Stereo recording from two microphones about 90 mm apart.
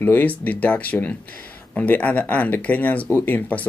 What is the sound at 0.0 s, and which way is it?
Speech, 20° left (ahead or behind).